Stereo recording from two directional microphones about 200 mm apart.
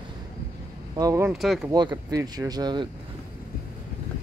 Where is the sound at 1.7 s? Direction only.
20° right (ahead or behind).